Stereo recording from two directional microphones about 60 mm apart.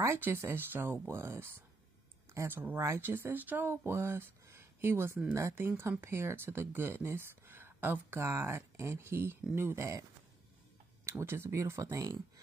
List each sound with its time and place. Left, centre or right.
0.2 s speech: right
2.5 s speech: right
3.4 s speech: right
3.7 s speech: right
8.2 s speech: right
11.1 s speech: right